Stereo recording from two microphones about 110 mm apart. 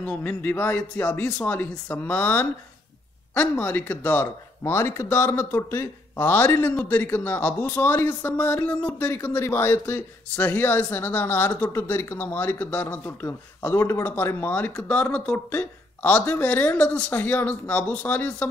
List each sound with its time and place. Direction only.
0.0 s speech: 15° left (ahead or behind)